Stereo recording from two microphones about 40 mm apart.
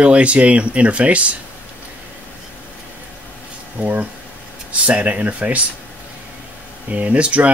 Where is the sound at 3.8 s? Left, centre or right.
Right.